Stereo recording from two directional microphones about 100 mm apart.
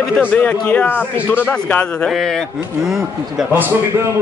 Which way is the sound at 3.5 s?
20° right (ahead or behind).